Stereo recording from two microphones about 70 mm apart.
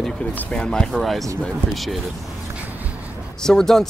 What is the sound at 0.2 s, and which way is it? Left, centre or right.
Speech, left.